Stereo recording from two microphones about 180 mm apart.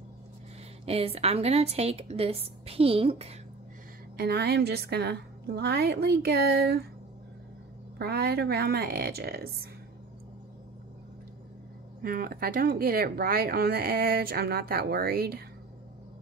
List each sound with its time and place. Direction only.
0.8 s a woman's voice: 35° right (ahead or behind)
4.2 s speech: 65° right (ahead or behind)
8.0 s speech: 60° right (ahead or behind)
12.0 s speech: 55° right (ahead or behind)